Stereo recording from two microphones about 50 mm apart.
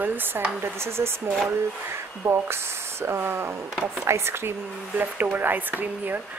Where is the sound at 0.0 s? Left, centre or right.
Right.